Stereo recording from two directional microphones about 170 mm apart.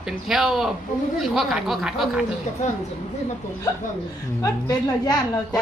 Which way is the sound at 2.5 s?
45° left (ahead or behind).